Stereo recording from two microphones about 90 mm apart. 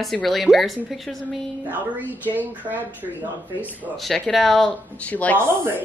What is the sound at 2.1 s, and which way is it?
Speech, 20° right (ahead or behind).